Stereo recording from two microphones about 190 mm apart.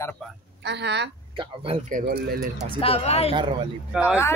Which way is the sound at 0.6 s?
65° right (ahead or behind).